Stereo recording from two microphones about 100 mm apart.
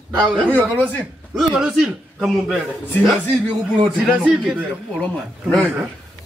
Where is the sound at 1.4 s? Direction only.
5° right (ahead or behind).